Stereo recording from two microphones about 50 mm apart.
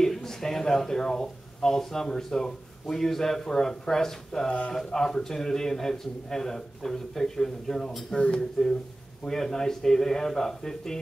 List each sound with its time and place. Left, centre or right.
0.0 s speech: centre
4.5 s speech: left
4.7 s speech: centre